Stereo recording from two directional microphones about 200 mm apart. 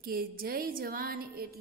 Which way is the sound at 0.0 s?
45° right (ahead or behind).